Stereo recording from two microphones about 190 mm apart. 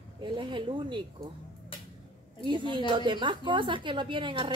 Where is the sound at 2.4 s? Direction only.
25° right (ahead or behind).